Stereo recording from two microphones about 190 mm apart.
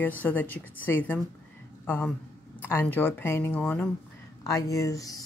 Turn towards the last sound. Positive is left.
turn(degrees=15)  # may be behind; listen again after turning